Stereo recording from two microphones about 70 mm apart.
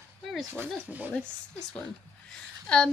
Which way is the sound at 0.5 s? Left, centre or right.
Right.